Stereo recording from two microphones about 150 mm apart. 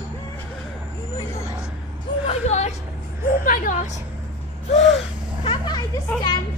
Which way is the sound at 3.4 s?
65° left (ahead or behind).